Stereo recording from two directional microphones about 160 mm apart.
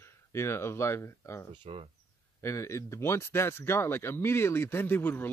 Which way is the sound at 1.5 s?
35° right (ahead or behind).